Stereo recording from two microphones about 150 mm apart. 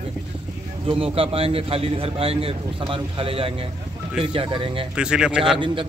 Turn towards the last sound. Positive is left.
turn(degrees=-5)  # may be behind; listen again after turning